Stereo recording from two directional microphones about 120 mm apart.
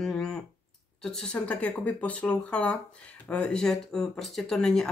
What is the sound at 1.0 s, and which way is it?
Speech, 5° left (ahead or behind).